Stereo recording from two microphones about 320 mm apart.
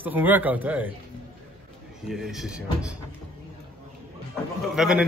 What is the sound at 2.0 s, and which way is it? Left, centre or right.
Speech, centre.